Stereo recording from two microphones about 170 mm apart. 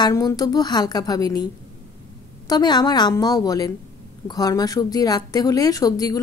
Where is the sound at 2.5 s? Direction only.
25° left (ahead or behind).